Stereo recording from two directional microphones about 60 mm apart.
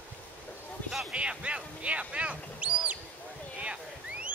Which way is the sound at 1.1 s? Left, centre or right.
Centre.